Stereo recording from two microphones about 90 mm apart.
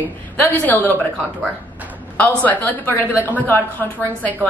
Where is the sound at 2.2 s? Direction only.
20° left (ahead or behind).